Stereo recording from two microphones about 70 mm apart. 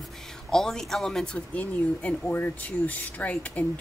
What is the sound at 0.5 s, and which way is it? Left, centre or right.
Speech, centre.